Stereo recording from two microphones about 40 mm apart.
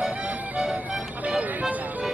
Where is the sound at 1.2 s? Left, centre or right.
Right.